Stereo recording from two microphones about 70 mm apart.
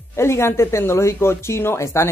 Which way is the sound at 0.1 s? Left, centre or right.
Left.